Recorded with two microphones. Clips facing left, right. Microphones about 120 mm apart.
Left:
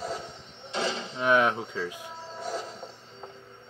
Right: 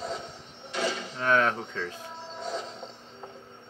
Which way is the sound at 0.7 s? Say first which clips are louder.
Even; 25° left (ahead or behind).